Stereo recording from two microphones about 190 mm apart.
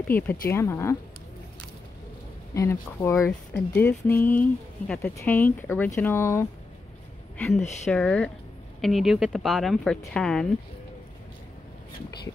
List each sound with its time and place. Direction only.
0.5 s speech: 15° left (ahead or behind)
2.5 s a woman's voice: 15° left (ahead or behind)